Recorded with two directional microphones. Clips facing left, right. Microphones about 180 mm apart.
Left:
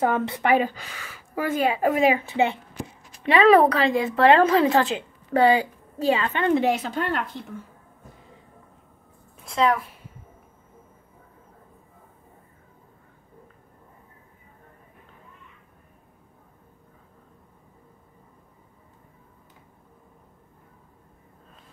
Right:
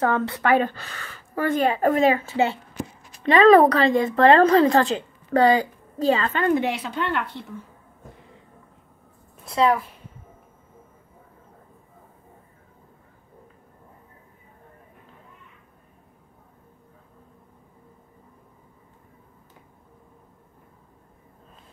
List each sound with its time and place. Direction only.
0.0 s a woman's voice: 15° left (ahead or behind)
6.3 s a woman's voice: 20° left (ahead or behind)
6.6 s speech: 45° left (ahead or behind)
9.5 s speech: centre (ahead or behind)